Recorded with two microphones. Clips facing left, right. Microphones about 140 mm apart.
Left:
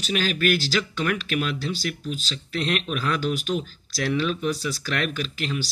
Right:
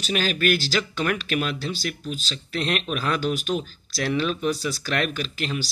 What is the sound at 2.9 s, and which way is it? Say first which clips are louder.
Speech: right 1 dB; 10° right (ahead or behind).